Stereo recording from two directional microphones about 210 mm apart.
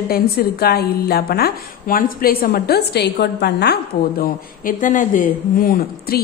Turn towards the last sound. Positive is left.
turn(degrees=45)  # may be behind; listen again after turning